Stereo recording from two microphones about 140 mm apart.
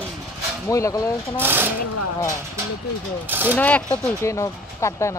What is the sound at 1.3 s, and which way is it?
Speech, 15° right (ahead or behind).